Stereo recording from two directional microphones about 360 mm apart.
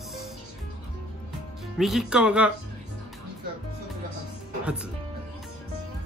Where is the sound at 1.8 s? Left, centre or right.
Centre.